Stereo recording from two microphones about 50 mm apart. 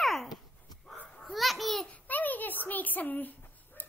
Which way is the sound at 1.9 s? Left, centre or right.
Left.